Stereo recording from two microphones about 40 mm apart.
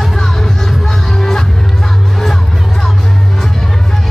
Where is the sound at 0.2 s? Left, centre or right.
Centre.